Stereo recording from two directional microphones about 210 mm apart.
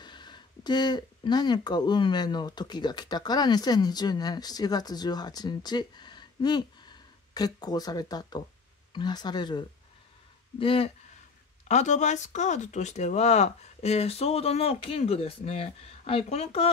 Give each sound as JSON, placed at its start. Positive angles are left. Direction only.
{"t": 0.0, "sound": "speech", "side_deg": 20}